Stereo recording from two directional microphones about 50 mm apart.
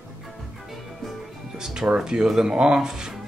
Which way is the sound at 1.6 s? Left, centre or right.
Centre.